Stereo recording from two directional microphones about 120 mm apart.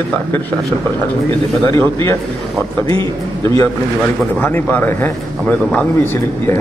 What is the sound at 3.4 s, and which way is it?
Speech, 25° left (ahead or behind).